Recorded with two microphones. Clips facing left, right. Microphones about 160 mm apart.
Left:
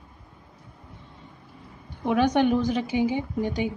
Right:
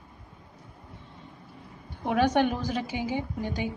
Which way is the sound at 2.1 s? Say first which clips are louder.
Left 3 dB; 20° left (ahead or behind).